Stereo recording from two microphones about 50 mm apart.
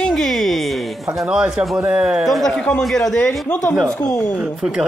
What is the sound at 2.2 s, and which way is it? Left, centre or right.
Speech, centre.